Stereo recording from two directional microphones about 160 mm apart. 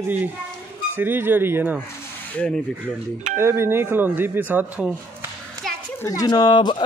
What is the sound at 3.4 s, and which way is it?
Speech, 15° right (ahead or behind).